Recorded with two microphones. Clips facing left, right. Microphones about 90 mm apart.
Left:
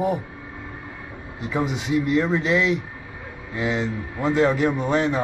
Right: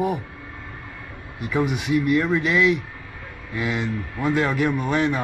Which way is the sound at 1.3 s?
25° left (ahead or behind).